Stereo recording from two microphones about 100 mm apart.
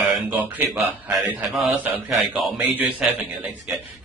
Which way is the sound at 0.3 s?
15° right (ahead or behind).